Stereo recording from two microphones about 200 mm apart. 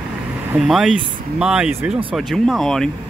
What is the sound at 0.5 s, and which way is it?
Speech, 5° right (ahead or behind).